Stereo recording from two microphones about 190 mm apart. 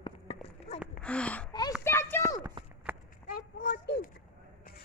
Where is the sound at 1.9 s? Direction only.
10° left (ahead or behind).